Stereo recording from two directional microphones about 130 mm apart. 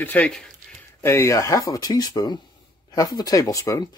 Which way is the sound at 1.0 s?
20° left (ahead or behind).